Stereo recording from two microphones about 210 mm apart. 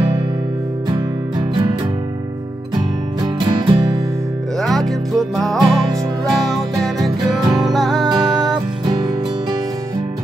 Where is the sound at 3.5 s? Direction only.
20° right (ahead or behind).